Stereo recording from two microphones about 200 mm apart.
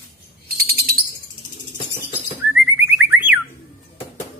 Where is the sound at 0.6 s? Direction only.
50° right (ahead or behind).